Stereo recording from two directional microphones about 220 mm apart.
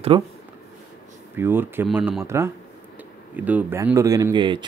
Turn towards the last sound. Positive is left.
turn(degrees=-20)  # may be behind; listen again after turning